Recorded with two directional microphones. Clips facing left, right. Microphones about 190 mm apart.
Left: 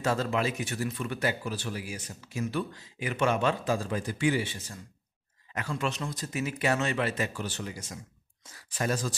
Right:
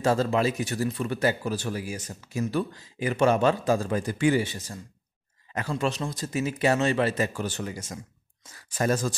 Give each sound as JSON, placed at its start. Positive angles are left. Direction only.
{"t": 0.0, "sound": "speech", "side_deg": -35}